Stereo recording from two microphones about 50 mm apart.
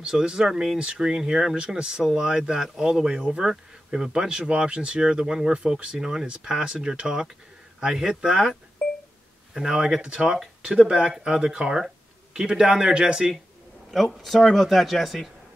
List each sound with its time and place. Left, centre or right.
0.0 s speech: centre
0.7 s speech: centre
13.9 s speech: centre